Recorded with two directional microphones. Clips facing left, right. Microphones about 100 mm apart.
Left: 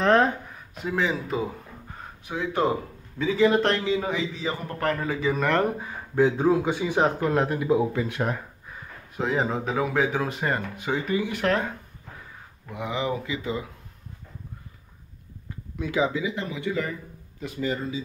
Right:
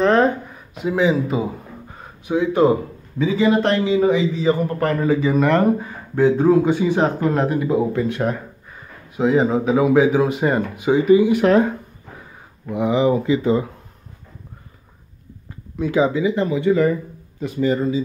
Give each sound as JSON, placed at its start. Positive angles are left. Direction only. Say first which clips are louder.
{"t": 0.0, "sound": "a sound", "louder": "right 4 dB", "side_deg": 0}
{"t": 0.8, "sound": "a man's voice", "louder": "right 8 dB", "side_deg": -15}
{"t": 15.8, "sound": "speech", "louder": "right 7 dB", "side_deg": -35}